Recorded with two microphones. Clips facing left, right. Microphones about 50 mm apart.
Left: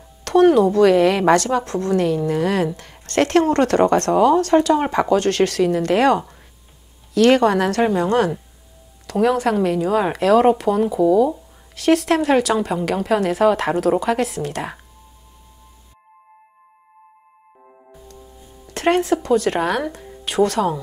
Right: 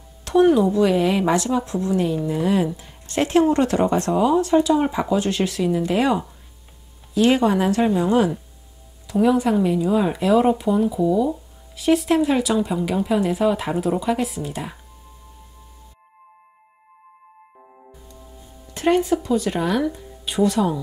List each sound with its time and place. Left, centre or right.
0.2 s a woman's voice: left
18.7 s speech: left